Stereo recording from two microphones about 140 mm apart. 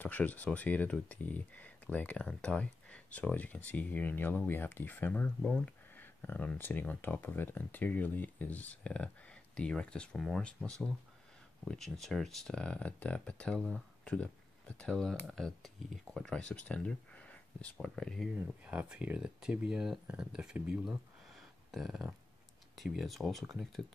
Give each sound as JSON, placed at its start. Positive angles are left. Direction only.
{"t": 0.0, "sound": "speech", "side_deg": 10}
{"t": 18.3, "sound": "speech", "side_deg": -10}